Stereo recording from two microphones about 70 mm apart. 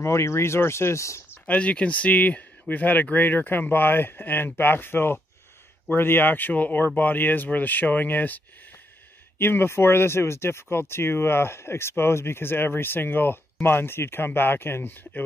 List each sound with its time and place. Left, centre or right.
0.0 s speech: left
1.5 s speech: centre
9.4 s speech: left